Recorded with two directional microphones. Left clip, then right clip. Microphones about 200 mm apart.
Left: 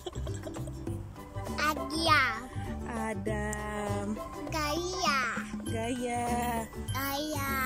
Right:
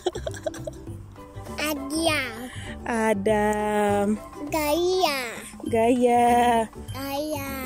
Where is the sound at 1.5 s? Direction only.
15° right (ahead or behind).